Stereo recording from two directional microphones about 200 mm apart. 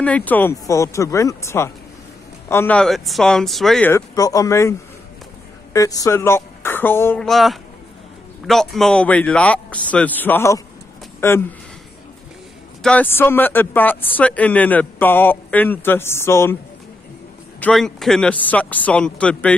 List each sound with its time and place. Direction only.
0.0 s speech: 5° left (ahead or behind)
4.1 s a woman's voice: 15° left (ahead or behind)
12.8 s speech: 10° left (ahead or behind)
17.6 s speech: 5° left (ahead or behind)